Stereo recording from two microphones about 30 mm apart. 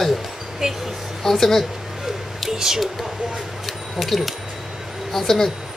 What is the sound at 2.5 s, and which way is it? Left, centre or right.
Speech, centre.